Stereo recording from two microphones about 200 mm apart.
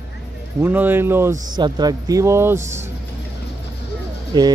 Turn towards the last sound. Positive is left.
turn(degrees=-20)  # may be behind; listen again after turning